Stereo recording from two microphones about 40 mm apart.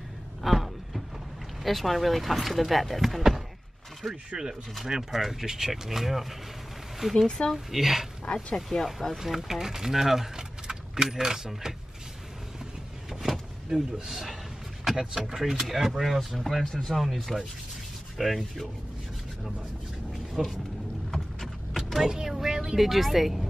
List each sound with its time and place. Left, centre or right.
0.4 s a sound: centre
1.6 s speech: centre
7.2 s speech: centre
7.5 s speech: centre
13.1 s power windows: centre
14.9 s speech: centre
16.6 s speech: centre
16.9 s speech: centre
20.4 s speech: centre
22.0 s vehicle: centre
22.8 s speech: centre